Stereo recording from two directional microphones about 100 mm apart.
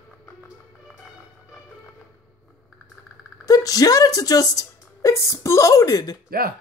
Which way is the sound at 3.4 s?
35° left (ahead or behind).